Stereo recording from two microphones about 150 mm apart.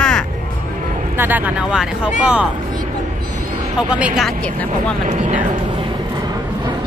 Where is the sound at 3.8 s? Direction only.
10° right (ahead or behind).